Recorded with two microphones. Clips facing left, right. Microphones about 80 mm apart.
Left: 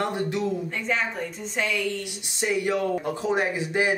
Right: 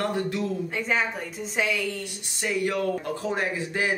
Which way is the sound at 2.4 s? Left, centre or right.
Centre.